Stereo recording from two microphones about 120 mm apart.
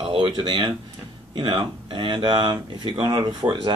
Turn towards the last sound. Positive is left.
turn(degrees=-35)  # may be behind; listen again after turning